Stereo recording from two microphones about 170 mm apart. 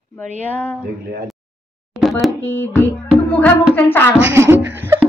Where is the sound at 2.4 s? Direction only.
15° left (ahead or behind).